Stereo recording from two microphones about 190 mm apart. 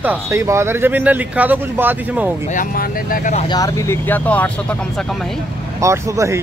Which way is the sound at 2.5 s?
45° left (ahead or behind).